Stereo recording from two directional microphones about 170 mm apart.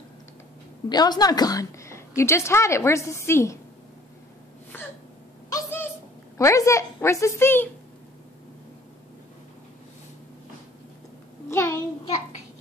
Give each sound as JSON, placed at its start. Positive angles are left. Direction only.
{"t": 0.8, "sound": "a woman's voice", "side_deg": 25}
{"t": 4.7, "sound": "hiccup", "side_deg": 10}
{"t": 5.5, "sound": "a sound", "side_deg": 10}
{"t": 6.3, "sound": "a woman's voice", "side_deg": 20}
{"t": 11.5, "sound": "a woman's voice", "side_deg": 15}